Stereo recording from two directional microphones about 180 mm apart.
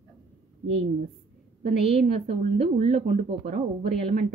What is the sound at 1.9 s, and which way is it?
Speech, 35° right (ahead or behind).